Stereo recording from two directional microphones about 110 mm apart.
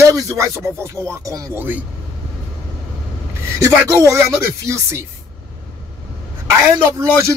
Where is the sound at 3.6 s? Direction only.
25° right (ahead or behind).